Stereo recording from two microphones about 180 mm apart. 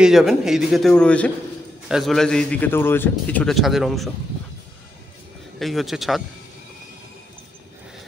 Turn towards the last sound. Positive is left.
turn(degrees=0)  # may be behind; listen again after turning